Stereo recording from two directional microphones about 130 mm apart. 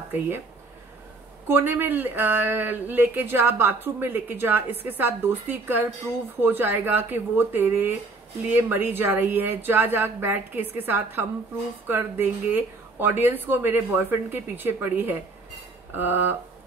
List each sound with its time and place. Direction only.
1.5 s speech: 15° right (ahead or behind)